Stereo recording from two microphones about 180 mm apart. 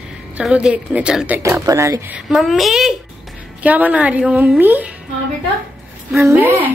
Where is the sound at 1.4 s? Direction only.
15° right (ahead or behind).